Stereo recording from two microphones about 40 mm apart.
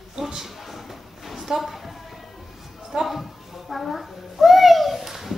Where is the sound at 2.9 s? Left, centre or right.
Centre.